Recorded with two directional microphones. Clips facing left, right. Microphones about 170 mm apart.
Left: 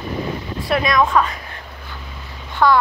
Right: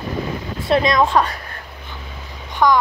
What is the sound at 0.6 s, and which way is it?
Speech, 25° right (ahead or behind).